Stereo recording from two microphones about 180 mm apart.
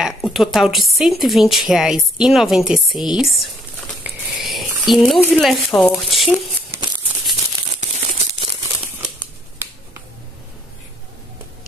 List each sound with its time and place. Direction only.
0.0 s speech: centre (ahead or behind)
4.0 s a sound: centre (ahead or behind)
4.6 s speech: centre (ahead or behind)
6.7 s a sound: 15° right (ahead or behind)
7.8 s tearing: 40° right (ahead or behind)
8.8 s scissors: 10° right (ahead or behind)